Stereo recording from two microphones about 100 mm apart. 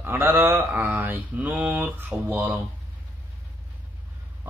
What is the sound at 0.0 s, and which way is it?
Speech, 20° right (ahead or behind).